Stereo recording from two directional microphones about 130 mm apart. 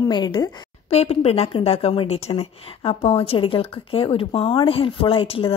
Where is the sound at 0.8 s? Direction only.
50° left (ahead or behind).